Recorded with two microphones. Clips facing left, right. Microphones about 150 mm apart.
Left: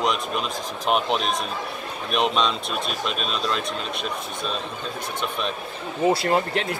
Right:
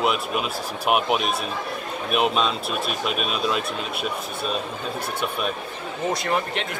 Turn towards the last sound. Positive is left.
turn(degrees=30)  # may be behind; listen again after turning